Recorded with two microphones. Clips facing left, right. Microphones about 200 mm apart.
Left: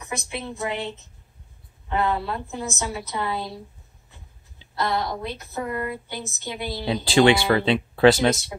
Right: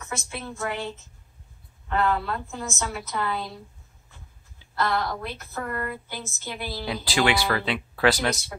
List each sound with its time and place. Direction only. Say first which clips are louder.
0.0 s a woman's voice: left 3 dB; 15° left (ahead or behind)